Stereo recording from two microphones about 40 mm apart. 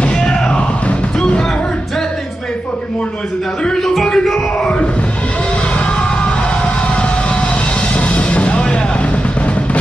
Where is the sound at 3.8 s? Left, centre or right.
Centre.